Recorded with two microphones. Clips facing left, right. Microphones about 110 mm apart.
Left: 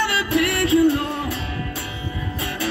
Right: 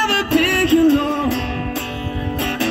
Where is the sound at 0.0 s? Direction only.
80° right.